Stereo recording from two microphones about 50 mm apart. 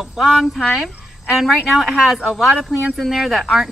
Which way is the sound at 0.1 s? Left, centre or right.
Centre.